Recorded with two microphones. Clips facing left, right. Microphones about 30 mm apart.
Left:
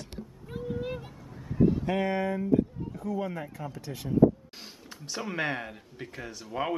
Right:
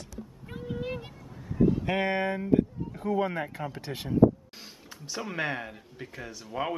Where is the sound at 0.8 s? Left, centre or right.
Right.